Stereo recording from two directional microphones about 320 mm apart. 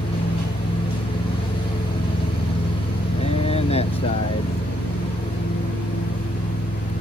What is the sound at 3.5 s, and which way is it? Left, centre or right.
Vehicle, centre.